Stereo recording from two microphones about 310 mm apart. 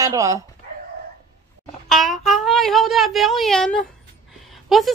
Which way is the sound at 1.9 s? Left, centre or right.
Centre.